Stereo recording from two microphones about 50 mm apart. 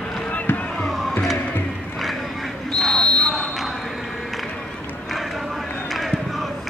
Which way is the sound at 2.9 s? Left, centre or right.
Centre.